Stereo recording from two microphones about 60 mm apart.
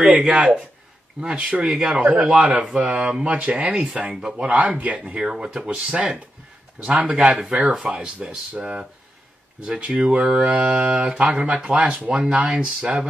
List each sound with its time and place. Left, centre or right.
0.2 s speech: centre
4.5 s speech: right
5.0 s speech: centre
7.3 s speech: centre
7.8 s speech: centre